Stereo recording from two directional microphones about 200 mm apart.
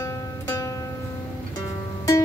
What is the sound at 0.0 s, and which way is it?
Music, 15° left (ahead or behind).